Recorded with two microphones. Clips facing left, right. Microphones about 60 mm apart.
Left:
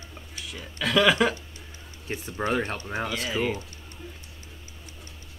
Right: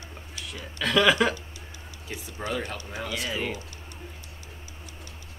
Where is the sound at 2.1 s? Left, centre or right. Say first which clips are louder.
Left 5 dB; left.